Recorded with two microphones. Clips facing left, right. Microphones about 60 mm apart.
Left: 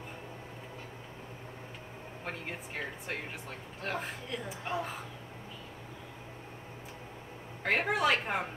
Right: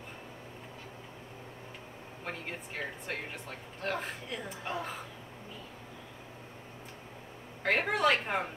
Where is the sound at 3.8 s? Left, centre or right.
Centre.